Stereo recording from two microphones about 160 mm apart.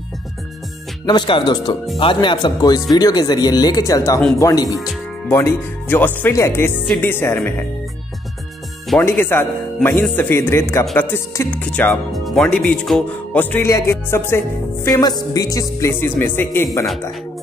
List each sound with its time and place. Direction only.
1.0 s music: 30° left (ahead or behind)
5.3 s speech: 15° left (ahead or behind)
9.0 s speech: 15° left (ahead or behind)
14.9 s music: 25° left (ahead or behind)